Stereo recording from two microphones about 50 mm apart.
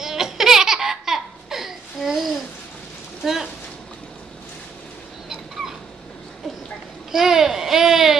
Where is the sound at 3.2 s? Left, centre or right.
Centre.